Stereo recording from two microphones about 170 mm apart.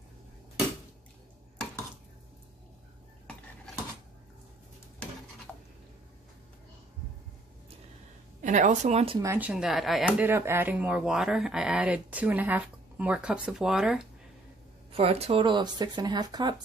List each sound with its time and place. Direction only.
3.3 s cutlery: centre (ahead or behind)
8.4 s a woman's voice: 50° right (ahead or behind)
9.2 s speech: 10° right (ahead or behind)
14.9 s speech: 35° right (ahead or behind)